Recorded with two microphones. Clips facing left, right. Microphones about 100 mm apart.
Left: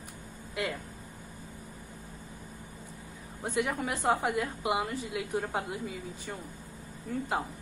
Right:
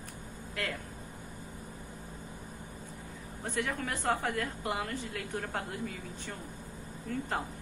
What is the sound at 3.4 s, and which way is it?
A woman's voice, 15° left (ahead or behind).